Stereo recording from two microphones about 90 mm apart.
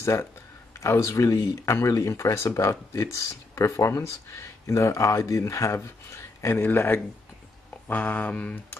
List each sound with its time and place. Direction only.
0.0 s speech: 30° left (ahead or behind); by 8.6 s 15° left (ahead or behind)